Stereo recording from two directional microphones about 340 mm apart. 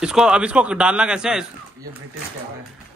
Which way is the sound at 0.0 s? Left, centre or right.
Centre.